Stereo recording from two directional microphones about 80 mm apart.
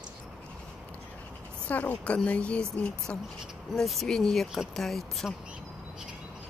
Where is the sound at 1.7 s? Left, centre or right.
Centre.